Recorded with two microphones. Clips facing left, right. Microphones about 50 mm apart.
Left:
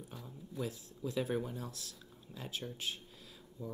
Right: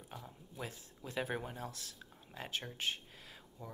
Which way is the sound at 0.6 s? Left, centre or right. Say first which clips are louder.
Left 6 dB; right.